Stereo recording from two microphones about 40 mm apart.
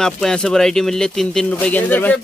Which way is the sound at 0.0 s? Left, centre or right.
Centre.